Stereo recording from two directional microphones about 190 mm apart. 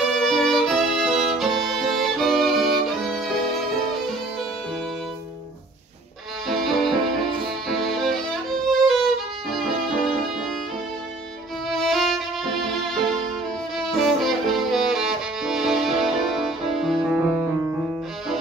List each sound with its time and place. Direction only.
0.0 s violin: centre (ahead or behind)
6.4 s music: centre (ahead or behind)
7.6 s violin: centre (ahead or behind)
8.8 s music: centre (ahead or behind)
11.7 s violin: centre (ahead or behind)
13.7 s music: centre (ahead or behind)